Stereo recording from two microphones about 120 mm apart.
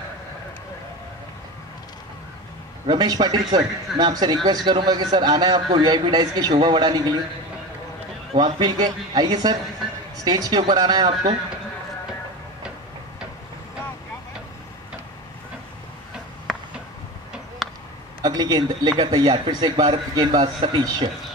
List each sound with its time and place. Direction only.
2.9 s speech: 35° right (ahead or behind)
8.4 s speech: 40° right (ahead or behind)
16.5 s a sound: centre (ahead or behind)
18.2 s speech: 35° right (ahead or behind)